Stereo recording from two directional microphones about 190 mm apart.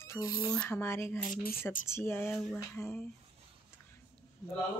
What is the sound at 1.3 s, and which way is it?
Speech, 50° left (ahead or behind).